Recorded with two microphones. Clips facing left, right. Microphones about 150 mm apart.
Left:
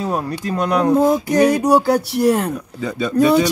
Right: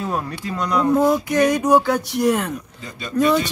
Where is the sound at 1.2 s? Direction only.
35° left (ahead or behind).